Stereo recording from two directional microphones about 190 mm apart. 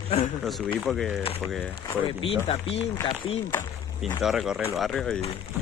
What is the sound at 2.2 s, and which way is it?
Speech, 30° left (ahead or behind).